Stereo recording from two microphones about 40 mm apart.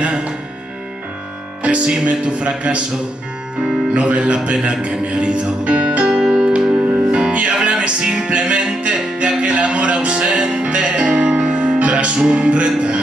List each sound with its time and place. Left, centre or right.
0.0 s music: right
1.6 s music: right
2.0 s speech: right
3.9 s music: right